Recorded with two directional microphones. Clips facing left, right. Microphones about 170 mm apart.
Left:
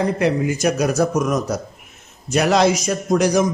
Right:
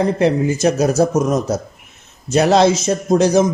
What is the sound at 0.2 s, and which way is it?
A man's voice, 25° right (ahead or behind).